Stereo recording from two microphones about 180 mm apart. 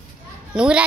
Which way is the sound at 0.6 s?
5° right (ahead or behind).